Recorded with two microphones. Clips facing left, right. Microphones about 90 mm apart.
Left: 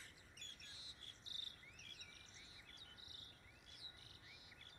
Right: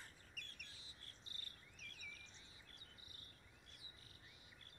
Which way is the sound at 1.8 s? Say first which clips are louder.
Right 4 dB; 35° left (ahead or behind).